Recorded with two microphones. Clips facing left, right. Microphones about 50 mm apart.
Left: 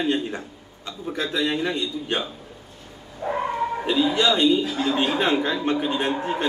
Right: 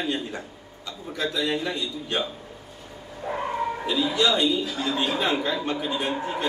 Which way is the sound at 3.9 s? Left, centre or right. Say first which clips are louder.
Left 3 dB; left.